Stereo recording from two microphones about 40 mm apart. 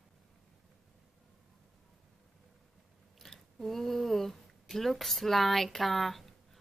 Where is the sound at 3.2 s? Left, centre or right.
Centre.